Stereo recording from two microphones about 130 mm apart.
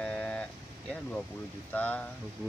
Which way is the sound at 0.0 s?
5° left (ahead or behind).